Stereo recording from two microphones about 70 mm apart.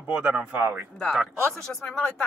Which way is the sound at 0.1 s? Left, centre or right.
Centre.